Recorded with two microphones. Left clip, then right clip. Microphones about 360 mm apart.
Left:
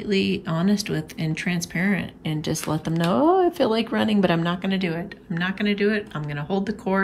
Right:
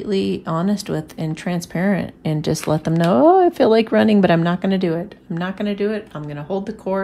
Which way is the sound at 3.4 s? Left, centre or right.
Centre.